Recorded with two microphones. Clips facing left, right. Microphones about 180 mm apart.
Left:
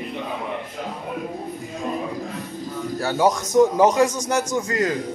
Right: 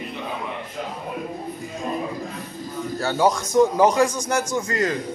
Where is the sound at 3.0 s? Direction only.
15° left (ahead or behind).